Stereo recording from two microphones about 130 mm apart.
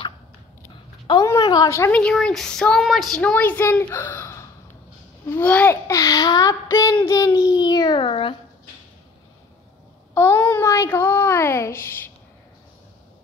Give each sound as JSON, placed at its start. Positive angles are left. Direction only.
{"t": 1.1, "sound": "a sound", "side_deg": 35}
{"t": 1.4, "sound": "a child's voice", "side_deg": 30}
{"t": 1.9, "sound": "a child's voice", "side_deg": 10}
{"t": 10.1, "sound": "a child's voice", "side_deg": 15}